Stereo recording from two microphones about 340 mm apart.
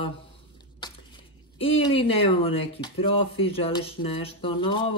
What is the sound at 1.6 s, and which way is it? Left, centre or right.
Speech, centre.